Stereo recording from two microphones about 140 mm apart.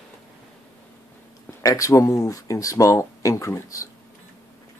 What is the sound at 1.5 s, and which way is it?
Speech, 25° left (ahead or behind).